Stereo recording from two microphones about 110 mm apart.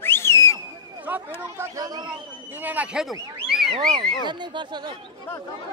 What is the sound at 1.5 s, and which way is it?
Speech, 30° right (ahead or behind).